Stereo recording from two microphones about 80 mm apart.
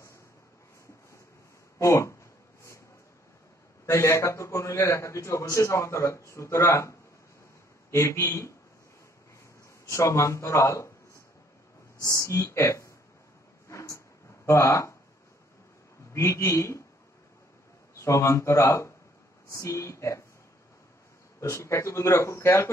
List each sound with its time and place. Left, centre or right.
1.8 s speech: left
3.8 s a man's voice: left
9.8 s a man's voice: left
12.0 s a man's voice: left
13.7 s a sound: left
16.1 s a man's voice: left
17.9 s a man's voice: left
21.4 s a man's voice: left